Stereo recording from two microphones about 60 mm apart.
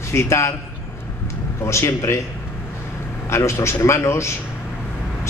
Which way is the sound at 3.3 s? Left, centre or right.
Left.